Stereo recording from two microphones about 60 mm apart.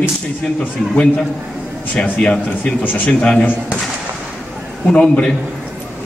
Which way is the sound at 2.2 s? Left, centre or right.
Centre.